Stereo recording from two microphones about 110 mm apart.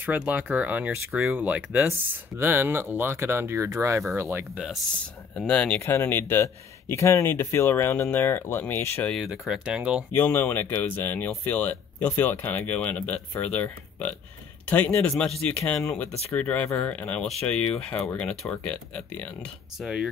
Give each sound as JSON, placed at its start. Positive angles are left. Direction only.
{"t": 0.0, "sound": "speech", "side_deg": -15}
{"t": 4.9, "sound": "speech", "side_deg": 10}
{"t": 5.8, "sound": "speech", "side_deg": 20}
{"t": 9.3, "sound": "speech", "side_deg": -5}
{"t": 10.1, "sound": "speech", "side_deg": 15}
{"t": 16.3, "sound": "speech", "side_deg": 15}
{"t": 19.8, "sound": "speech", "side_deg": -5}